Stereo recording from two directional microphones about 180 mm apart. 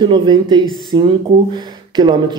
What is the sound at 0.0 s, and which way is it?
Speech, 25° right (ahead or behind).